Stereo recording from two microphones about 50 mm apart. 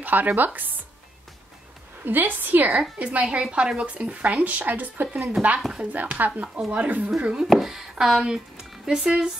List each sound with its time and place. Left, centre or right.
0.0 s speech: right
2.0 s speech: right
3.0 s speech: right
7.2 s speech: centre
7.4 s speech: centre